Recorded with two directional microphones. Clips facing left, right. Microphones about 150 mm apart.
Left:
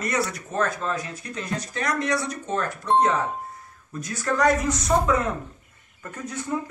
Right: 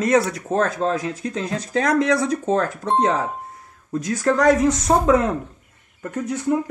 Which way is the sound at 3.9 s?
90° right.